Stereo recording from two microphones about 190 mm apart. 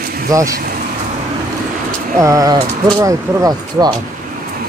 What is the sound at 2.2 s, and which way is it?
Speech, 20° right (ahead or behind).